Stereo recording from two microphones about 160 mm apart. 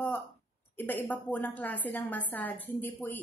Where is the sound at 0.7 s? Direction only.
10° left (ahead or behind).